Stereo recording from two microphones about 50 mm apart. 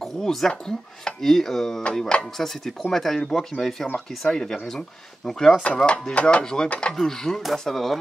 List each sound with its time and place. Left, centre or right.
0.0 s speech: centre
1.3 s speech: centre
2.0 s speech: centre
2.3 s speech: centre
5.9 s chopping: left
6.4 s speech: centre